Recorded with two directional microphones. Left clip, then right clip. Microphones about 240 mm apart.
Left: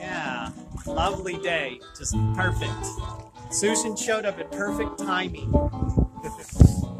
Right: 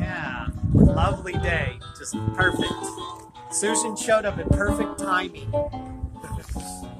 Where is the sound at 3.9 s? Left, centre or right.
Centre.